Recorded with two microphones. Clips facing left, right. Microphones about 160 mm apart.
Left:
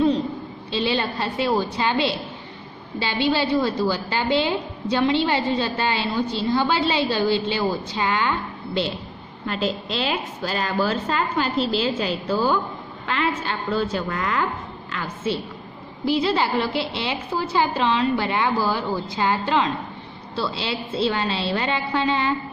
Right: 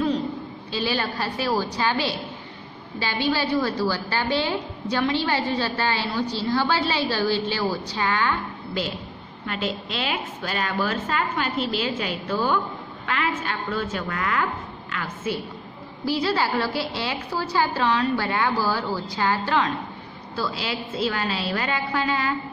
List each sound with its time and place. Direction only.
0.7 s a woman's voice: 25° left (ahead or behind)